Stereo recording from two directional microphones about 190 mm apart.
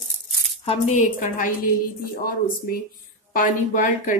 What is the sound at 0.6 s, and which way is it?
Speech, 40° left (ahead or behind).